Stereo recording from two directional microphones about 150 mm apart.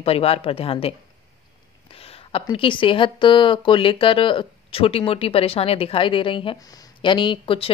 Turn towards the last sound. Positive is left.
turn(degrees=35)  # may be behind; listen again after turning